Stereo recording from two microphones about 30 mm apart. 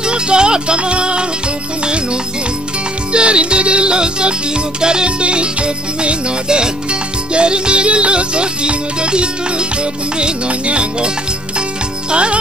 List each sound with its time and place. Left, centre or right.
0.0 s music: right
3.1 s music: right
5.2 s music: right
12.1 s music: right